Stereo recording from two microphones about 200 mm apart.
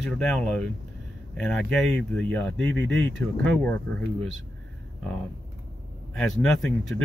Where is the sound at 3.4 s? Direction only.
5° left (ahead or behind).